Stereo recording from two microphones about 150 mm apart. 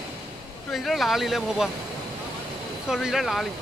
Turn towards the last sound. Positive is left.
turn(degrees=0)  # may be behind; listen again after turning